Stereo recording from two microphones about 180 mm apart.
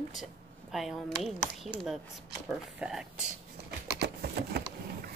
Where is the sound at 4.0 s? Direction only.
65° right (ahead or behind).